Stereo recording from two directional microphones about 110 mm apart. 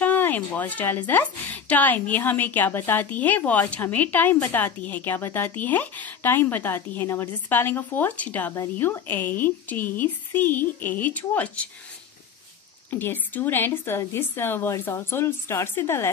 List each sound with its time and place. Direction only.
0.0 s a woman's voice: 15° left (ahead or behind)
12.9 s a woman's voice: 20° left (ahead or behind)